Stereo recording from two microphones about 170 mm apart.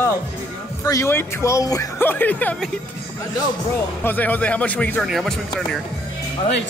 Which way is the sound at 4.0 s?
10° left (ahead or behind).